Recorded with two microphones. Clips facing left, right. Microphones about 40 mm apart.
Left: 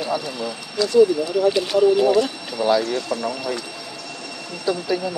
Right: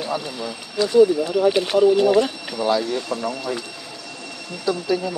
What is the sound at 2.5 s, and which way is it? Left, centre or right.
Speech, centre.